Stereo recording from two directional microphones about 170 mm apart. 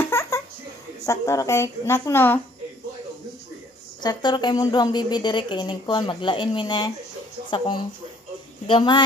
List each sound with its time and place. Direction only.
0.0 s a sound: 15° left (ahead or behind)
1.0 s a woman's voice: 20° left (ahead or behind)
4.0 s a woman's voice: 25° left (ahead or behind)